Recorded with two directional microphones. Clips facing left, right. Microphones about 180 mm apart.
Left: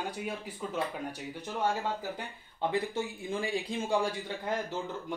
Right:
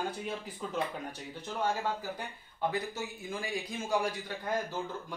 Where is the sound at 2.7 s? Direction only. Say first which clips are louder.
Left 3 dB; 30° left (ahead or behind).